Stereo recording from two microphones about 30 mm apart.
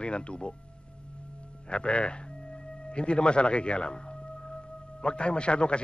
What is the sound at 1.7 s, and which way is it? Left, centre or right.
A man's voice, left.